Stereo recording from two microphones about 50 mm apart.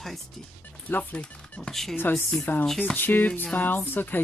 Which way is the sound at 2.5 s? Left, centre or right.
Left.